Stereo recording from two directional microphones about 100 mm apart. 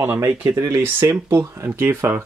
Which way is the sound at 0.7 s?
25° right (ahead or behind).